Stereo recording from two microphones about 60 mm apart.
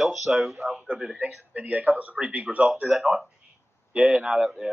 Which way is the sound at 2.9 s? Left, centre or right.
Centre.